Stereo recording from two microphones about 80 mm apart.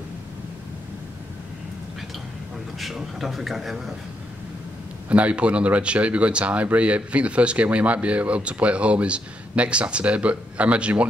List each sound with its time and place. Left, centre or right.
2.8 s a man's voice: centre
5.1 s speech: centre